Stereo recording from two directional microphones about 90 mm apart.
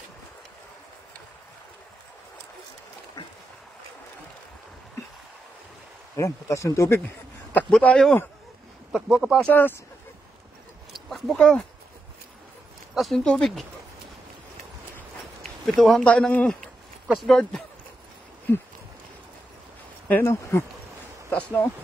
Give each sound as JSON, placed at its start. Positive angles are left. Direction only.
{"t": 6.1, "sound": "speech", "side_deg": 35}
{"t": 7.8, "sound": "speech", "side_deg": 10}
{"t": 8.9, "sound": "speech", "side_deg": -5}
{"t": 9.5, "sound": "speech", "side_deg": 20}
{"t": 10.9, "sound": "a sound", "side_deg": 0}
{"t": 11.3, "sound": "speech", "side_deg": 10}
{"t": 12.9, "sound": "speech", "side_deg": 0}
{"t": 15.6, "sound": "speech", "side_deg": 5}
{"t": 17.1, "sound": "speech", "side_deg": 0}
{"t": 20.2, "sound": "speech", "side_deg": 30}
{"t": 21.3, "sound": "speech", "side_deg": 15}